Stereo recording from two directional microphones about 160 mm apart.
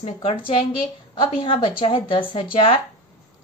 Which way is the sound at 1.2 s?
30° left (ahead or behind).